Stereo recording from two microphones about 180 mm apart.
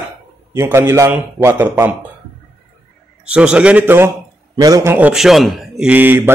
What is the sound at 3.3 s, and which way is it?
A man's voice, 5° right (ahead or behind).